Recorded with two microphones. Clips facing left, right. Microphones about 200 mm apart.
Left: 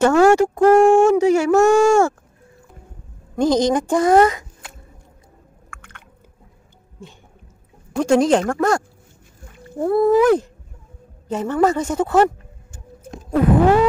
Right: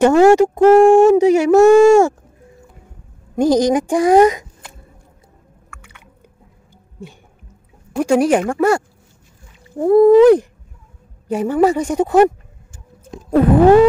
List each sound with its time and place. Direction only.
0.0 s speech: 15° right (ahead or behind)
3.3 s speech: 10° right (ahead or behind)
5.7 s chewing: 10° right (ahead or behind)
7.9 s speech: 10° right (ahead or behind)